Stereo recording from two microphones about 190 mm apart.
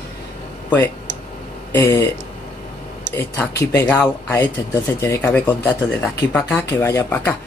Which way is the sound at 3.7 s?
10° left (ahead or behind).